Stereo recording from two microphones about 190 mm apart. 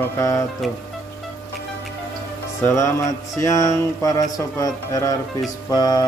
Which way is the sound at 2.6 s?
15° left (ahead or behind).